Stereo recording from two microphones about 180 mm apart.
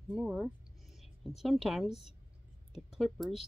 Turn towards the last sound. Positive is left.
turn(degrees=0)  # may be behind; listen again after turning